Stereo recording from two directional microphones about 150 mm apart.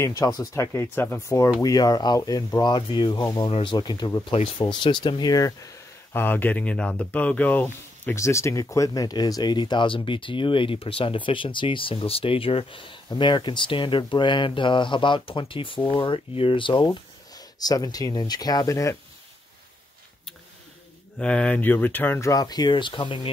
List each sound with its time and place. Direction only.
0.0 s speech: 25° left (ahead or behind)
6.1 s speech: 10° left (ahead or behind)
21.2 s speech: 5° left (ahead or behind); by 23.3 s 30° left (ahead or behind)